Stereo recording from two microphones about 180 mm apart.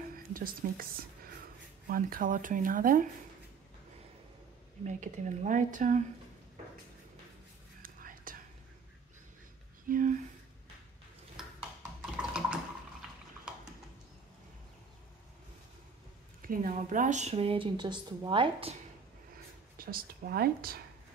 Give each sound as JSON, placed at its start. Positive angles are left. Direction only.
{"t": 0.1, "sound": "a sound", "side_deg": -55}
{"t": 1.9, "sound": "speech", "side_deg": -50}
{"t": 4.8, "sound": "speech", "side_deg": -40}
{"t": 7.8, "sound": "whispering", "side_deg": -50}
{"t": 9.8, "sound": "a sound", "side_deg": -45}
{"t": 11.4, "sound": "a sound", "side_deg": -5}
{"t": 12.2, "sound": "water", "side_deg": -5}
{"t": 16.4, "sound": "a woman's voice", "side_deg": -50}
{"t": 19.8, "sound": "speech", "side_deg": -55}